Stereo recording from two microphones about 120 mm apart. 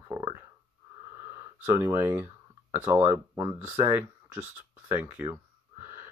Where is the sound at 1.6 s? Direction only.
20° right (ahead or behind).